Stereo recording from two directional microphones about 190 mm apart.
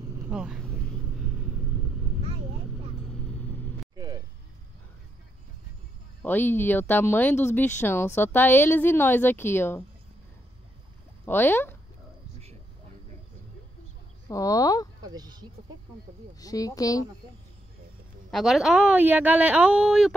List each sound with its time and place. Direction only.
0.3 s speech: 5° right (ahead or behind)
3.1 s vehicle: 5° left (ahead or behind)
3.9 s a sound: 20° right (ahead or behind)
6.2 s speech: 10° left (ahead or behind)
11.2 s speech: 10° left (ahead or behind)
14.3 s speech: 20° left (ahead or behind)
15.0 s speech: 20° right (ahead or behind)
16.3 s speech: 20° left (ahead or behind)
18.3 s a woman's voice: centre (ahead or behind)